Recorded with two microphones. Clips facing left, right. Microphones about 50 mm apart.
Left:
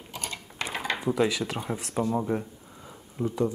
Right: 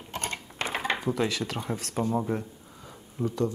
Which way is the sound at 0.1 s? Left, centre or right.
Right.